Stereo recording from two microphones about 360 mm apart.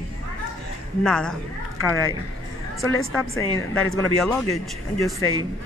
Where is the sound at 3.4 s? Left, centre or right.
Centre.